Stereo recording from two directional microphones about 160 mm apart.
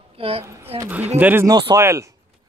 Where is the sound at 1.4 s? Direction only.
25° right (ahead or behind).